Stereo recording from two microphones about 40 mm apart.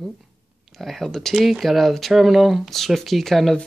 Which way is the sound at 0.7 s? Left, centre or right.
Centre.